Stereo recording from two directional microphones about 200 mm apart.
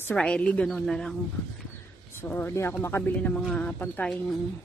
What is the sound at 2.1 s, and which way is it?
Speech, 10° left (ahead or behind).